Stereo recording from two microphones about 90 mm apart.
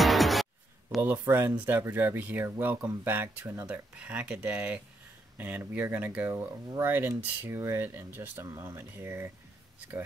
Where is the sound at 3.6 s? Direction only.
15° right (ahead or behind).